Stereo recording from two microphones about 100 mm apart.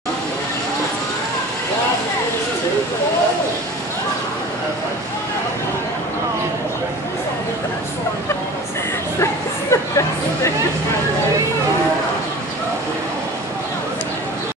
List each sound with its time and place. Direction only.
9.2 s hubbub: 30° left (ahead or behind)